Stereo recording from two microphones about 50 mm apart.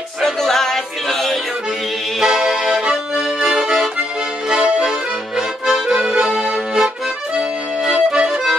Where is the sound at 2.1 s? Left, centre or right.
Centre.